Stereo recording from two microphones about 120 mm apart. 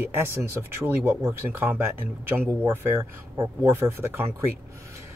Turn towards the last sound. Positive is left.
turn(degrees=-20)  # may be behind; listen again after turning